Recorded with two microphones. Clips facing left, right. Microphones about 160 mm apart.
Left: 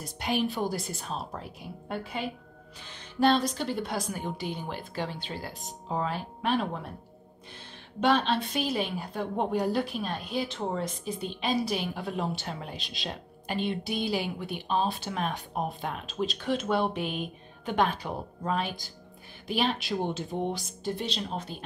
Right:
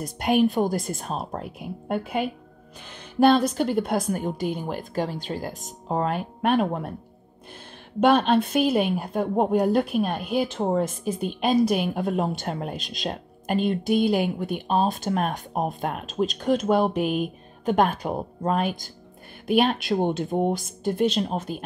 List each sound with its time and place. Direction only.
0.0 s a woman's voice: 50° right (ahead or behind)
8.0 s a woman's voice: 50° right (ahead or behind)